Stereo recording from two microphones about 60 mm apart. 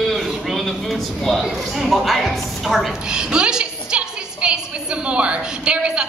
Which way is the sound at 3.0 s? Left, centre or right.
Centre.